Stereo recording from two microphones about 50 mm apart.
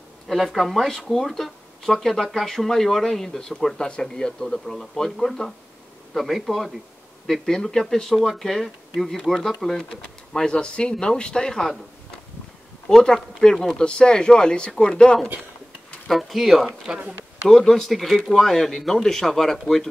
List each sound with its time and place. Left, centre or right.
0.3 s speech: centre
10.3 s speech: centre
12.8 s speech: centre
16.1 s speech: centre
17.5 s speech: centre